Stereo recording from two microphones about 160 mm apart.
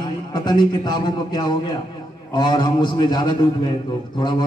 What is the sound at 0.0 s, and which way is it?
A man's voice, 25° left (ahead or behind).